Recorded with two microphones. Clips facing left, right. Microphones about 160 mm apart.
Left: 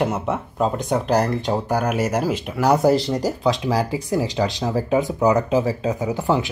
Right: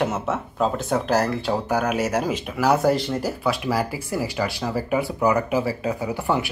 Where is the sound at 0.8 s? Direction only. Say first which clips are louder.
Left 3 dB; 5° right (ahead or behind).